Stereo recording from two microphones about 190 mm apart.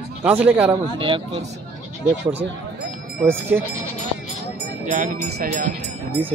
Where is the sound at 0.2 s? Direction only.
10° right (ahead or behind).